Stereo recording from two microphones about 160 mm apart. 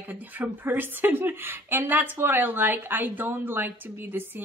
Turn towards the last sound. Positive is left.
turn(degrees=-10)  # may be behind; listen again after turning